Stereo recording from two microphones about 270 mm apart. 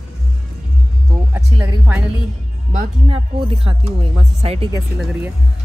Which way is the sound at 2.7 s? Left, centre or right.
Right.